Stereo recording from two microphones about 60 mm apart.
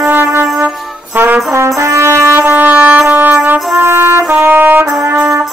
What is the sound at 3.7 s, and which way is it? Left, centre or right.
Trumpet, right.